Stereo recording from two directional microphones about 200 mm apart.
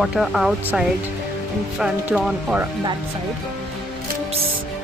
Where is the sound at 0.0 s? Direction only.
Centre (ahead or behind).